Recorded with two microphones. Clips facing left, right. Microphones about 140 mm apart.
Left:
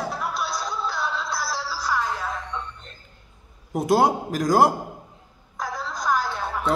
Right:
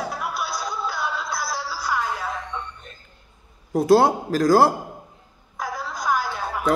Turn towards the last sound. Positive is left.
turn(degrees=-5)  # may be behind; listen again after turning